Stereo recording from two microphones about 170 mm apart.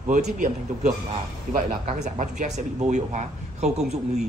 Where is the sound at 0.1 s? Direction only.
45° right (ahead or behind).